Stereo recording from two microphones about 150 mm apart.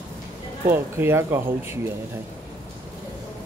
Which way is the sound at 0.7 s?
15° right (ahead or behind).